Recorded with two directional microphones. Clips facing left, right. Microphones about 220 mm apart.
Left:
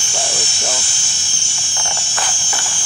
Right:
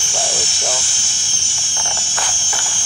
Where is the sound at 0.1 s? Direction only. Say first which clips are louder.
Right 1 dB; 25° left (ahead or behind).